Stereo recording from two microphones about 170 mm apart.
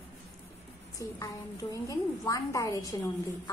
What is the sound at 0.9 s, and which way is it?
A woman's voice, 20° left (ahead or behind).